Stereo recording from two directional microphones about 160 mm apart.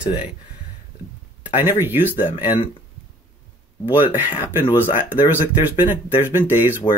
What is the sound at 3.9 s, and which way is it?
Speech, 10° right (ahead or behind).